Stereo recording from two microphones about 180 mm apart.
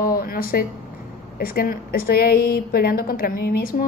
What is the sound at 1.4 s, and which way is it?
A woman's voice, 55° left (ahead or behind).